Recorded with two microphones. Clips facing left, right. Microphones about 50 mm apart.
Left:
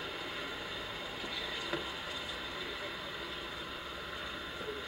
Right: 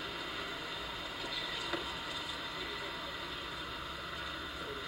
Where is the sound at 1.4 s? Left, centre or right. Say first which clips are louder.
Left 1 dB; centre.